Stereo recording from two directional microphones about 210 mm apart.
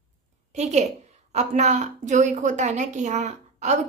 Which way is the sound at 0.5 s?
35° right (ahead or behind).